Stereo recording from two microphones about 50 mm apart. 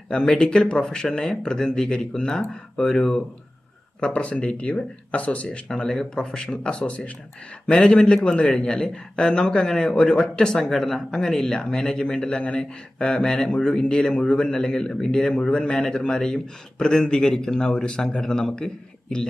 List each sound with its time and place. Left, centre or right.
0.1 s speech: centre
4.0 s speech: left
5.7 s speech: centre